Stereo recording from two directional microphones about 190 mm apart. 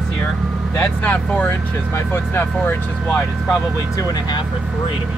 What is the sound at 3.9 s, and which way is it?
Speech, 20° left (ahead or behind).